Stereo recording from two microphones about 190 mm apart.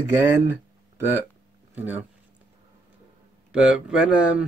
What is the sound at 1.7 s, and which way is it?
Speech, 10° right (ahead or behind).